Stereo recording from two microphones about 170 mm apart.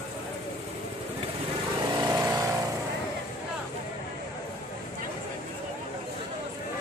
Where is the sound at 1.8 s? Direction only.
20° right (ahead or behind).